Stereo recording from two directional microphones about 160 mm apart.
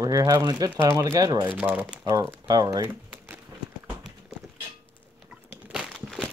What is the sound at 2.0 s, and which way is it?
Speech, 20° right (ahead or behind).